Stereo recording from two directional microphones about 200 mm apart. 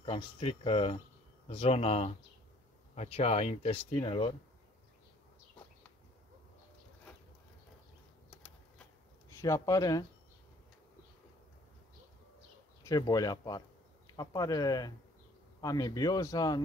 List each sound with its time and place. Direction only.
0.0 s speech: 25° left (ahead or behind)
9.3 s speech: 15° left (ahead or behind)
12.8 s speech: 20° left (ahead or behind)